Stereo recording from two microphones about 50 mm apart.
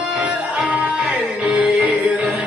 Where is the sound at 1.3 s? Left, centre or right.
Right.